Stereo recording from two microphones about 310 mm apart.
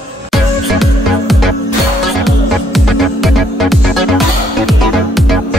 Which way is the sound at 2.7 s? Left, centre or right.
Centre.